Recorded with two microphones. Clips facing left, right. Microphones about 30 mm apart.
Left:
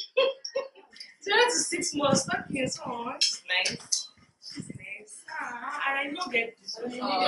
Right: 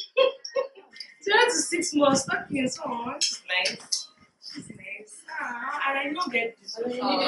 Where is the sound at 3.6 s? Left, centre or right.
Right.